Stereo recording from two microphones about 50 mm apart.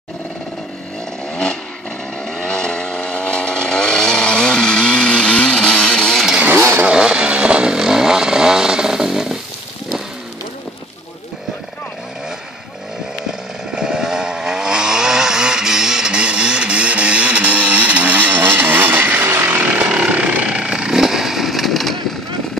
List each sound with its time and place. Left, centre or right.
1.3 s a sound: centre
2.4 s chainsaw: centre
6.9 s vehicle: centre
13.3 s chainsaw: centre; by 18.4 s right
18.4 s vehicle: right
19.5 s sawing: right
19.9 s a sound: centre
20.5 s vehicle: centre